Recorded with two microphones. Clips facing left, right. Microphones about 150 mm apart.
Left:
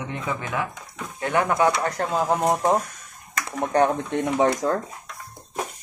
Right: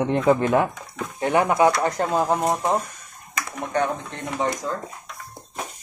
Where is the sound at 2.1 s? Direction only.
5° right (ahead or behind).